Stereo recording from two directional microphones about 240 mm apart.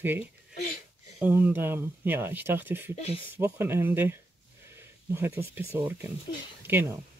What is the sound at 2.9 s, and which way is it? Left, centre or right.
Speech, left.